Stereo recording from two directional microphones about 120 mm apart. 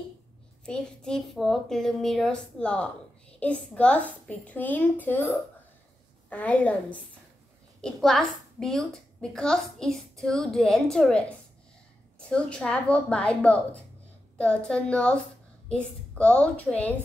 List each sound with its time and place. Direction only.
0.7 s a child's voice: 5° left (ahead or behind)